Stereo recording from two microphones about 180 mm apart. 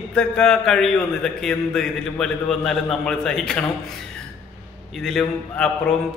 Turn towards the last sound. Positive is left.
turn(degrees=0)  # may be behind; listen again after turning